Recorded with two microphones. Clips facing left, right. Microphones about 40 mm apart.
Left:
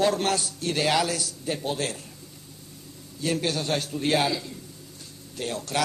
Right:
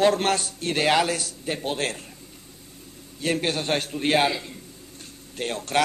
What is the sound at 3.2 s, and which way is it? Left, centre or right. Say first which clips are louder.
Speech: right 2 dB; right.